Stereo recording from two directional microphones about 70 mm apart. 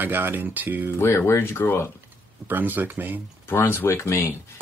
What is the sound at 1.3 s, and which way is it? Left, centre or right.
Speech, left.